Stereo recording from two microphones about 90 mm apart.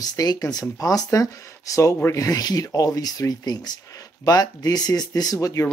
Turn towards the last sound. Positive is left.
turn(degrees=40)  # may be behind; listen again after turning